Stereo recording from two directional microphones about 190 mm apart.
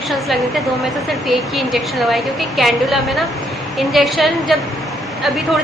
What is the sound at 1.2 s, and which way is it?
A woman's voice, centre (ahead or behind).